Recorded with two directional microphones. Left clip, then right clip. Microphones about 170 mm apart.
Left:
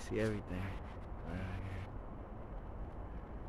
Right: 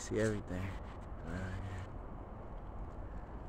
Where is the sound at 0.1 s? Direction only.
20° right (ahead or behind).